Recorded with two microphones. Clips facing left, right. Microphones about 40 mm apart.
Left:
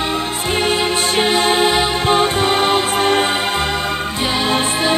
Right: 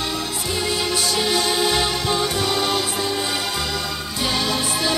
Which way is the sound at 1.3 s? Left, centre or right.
Left.